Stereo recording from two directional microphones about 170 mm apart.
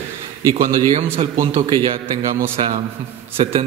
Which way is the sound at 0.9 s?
35° right (ahead or behind).